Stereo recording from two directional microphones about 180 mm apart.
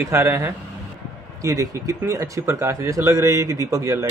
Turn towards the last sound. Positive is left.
turn(degrees=-15)  # may be behind; listen again after turning